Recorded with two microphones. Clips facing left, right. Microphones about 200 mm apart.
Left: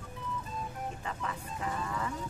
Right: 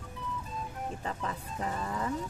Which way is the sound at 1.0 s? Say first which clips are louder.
Right 2 dB; 35° right (ahead or behind).